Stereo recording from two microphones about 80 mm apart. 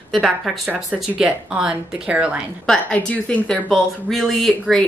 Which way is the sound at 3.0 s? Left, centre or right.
Centre.